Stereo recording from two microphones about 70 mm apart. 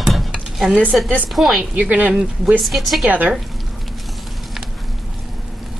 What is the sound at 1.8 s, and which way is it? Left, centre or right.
Speech, right.